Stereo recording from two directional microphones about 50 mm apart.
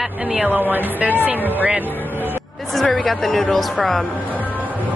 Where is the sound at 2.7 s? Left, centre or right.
Centre.